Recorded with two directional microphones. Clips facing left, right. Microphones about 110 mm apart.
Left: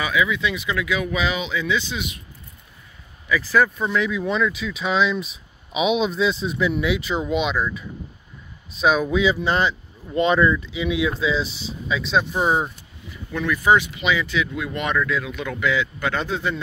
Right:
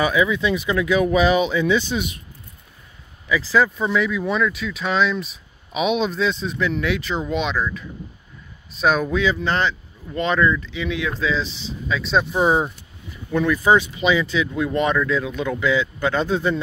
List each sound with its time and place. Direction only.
0.0 s speech: 35° right (ahead or behind)
3.3 s speech: 15° right (ahead or behind)
13.3 s speech: 30° right (ahead or behind)